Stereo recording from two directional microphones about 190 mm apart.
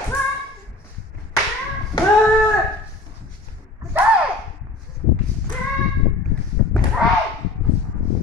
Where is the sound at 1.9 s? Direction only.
20° left (ahead or behind).